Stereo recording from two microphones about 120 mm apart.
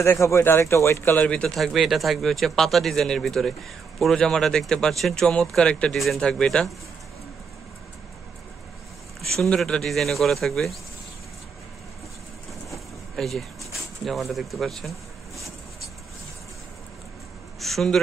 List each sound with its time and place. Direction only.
0.0 s speech: 20° left (ahead or behind); by 6.7 s 5° left (ahead or behind)
9.2 s speech: 5° left (ahead or behind)
13.1 s pigeon: centre (ahead or behind)
17.6 s speech: centre (ahead or behind)